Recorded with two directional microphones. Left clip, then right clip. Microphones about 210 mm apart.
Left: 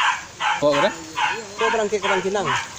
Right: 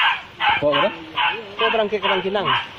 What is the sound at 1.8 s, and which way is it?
Speech, 20° left (ahead or behind).